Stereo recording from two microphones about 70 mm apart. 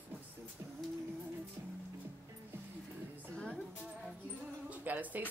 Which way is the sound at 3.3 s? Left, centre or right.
Centre.